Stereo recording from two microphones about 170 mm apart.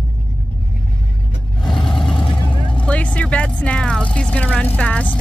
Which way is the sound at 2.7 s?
10° left (ahead or behind).